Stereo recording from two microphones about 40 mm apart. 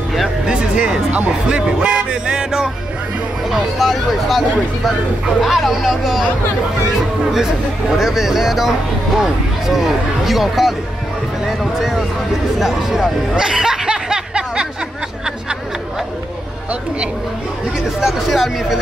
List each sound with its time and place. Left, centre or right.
0.5 s speech: centre
3.5 s speech: centre
5.4 s speech: centre
8.0 s speech: centre
13.4 s snicker: centre
18.0 s speech: centre